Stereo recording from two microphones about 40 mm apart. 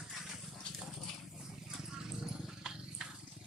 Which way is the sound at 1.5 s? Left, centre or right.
Centre.